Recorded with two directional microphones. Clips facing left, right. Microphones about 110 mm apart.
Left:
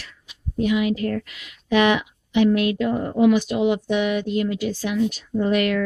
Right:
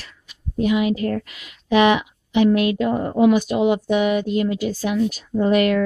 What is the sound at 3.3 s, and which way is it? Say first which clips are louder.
Speech: right 2 dB; 45° right (ahead or behind).